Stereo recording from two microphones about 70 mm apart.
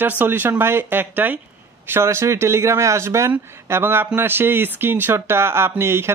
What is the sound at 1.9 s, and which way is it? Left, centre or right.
Speech, right.